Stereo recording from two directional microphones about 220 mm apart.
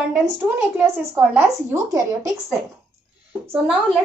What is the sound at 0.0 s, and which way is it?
A woman's voice, 5° right (ahead or behind).